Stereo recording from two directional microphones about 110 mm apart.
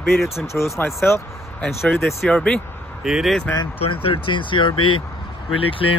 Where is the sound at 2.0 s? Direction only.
5° left (ahead or behind).